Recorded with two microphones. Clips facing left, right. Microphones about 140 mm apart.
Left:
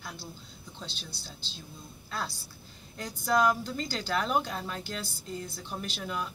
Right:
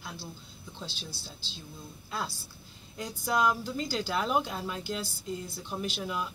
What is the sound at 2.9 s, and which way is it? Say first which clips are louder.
Speech: left 2 dB; 5° right (ahead or behind).